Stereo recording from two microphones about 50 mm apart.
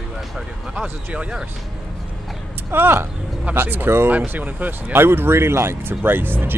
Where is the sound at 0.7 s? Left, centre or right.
Right.